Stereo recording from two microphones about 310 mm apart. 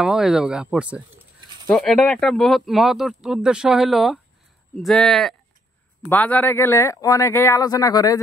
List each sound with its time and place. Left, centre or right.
0.0 s speech: centre